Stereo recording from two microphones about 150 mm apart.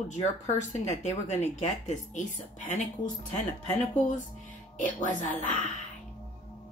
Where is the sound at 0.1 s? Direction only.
50° left (ahead or behind).